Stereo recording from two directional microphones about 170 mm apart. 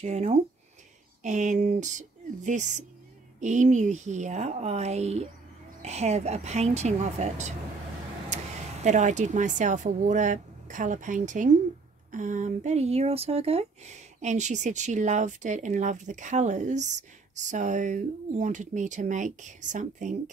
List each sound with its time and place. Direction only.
0.0 s speech: 40° right (ahead or behind)
8.8 s speech: 45° right (ahead or behind)